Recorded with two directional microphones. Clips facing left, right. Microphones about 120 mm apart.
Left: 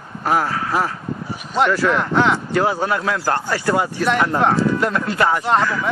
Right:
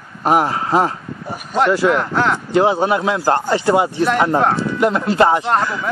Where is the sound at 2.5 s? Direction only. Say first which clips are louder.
Right 4 dB; 20° right (ahead or behind).